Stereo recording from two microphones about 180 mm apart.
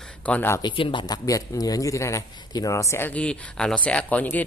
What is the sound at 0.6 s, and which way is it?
A man's voice, 25° left (ahead or behind).